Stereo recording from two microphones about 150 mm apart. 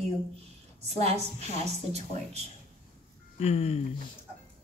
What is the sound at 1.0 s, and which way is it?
A woman's voice, 45° right (ahead or behind).